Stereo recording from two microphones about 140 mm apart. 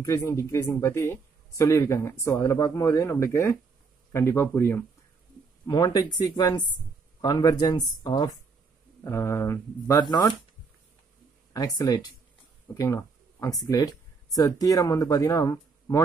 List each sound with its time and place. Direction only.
0.0 s speech: 25° left (ahead or behind)
5.7 s speech: 30° left (ahead or behind)
9.0 s speech: 20° left (ahead or behind)
11.5 s speech: 25° left (ahead or behind)